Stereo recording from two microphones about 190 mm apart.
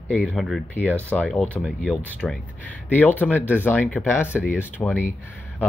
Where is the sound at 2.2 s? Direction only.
10° left (ahead or behind).